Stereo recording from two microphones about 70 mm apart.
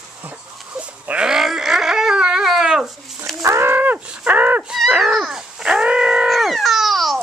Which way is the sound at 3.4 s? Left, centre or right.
Right.